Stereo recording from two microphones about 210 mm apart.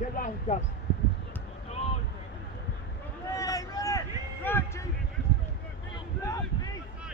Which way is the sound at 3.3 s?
15° left (ahead or behind).